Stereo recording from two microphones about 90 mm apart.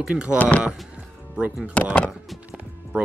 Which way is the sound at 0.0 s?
10° right (ahead or behind).